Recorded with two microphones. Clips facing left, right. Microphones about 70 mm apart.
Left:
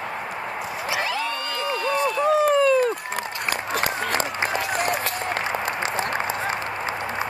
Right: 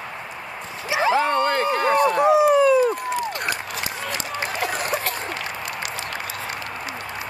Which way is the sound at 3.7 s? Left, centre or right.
Left.